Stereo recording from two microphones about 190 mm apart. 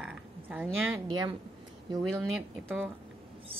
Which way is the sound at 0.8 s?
15° right (ahead or behind).